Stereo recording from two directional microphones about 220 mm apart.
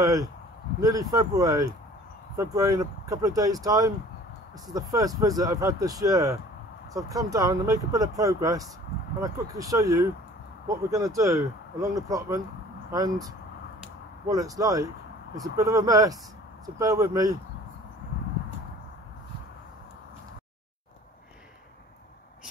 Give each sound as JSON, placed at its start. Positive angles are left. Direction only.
{"t": 0.0, "sound": "speech", "side_deg": -15}
{"t": 14.3, "sound": "speech", "side_deg": -15}